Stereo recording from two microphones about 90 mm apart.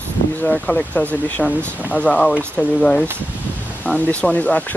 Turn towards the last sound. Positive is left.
turn(degrees=15)  # may be behind; listen again after turning